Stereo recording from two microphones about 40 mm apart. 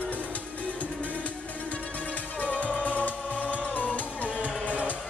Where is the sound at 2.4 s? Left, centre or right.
Left.